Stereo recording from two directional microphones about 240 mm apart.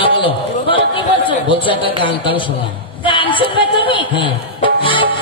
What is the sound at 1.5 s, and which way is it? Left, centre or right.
A man's voice, left.